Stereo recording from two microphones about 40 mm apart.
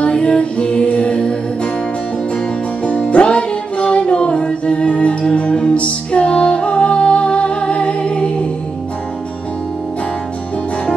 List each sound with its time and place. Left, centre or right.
0.0 s music: left